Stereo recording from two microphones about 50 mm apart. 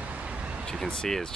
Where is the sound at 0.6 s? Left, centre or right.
Centre.